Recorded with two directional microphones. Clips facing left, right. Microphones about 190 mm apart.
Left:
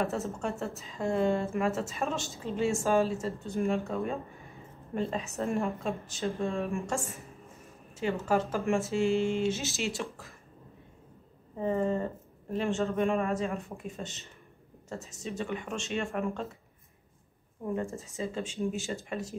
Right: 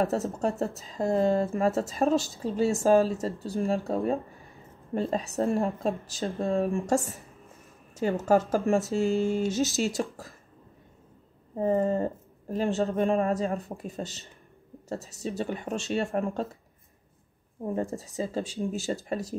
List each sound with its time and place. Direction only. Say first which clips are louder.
0.0 s a woman's voice: right 5 dB; 35° right (ahead or behind)
11.5 s a woman's voice: right 4 dB; 40° right (ahead or behind)
17.7 s a woman's voice: right 5 dB; 35° right (ahead or behind)